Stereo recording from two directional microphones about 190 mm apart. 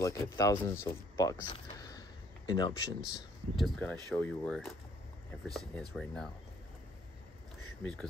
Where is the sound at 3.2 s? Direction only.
Centre (ahead or behind).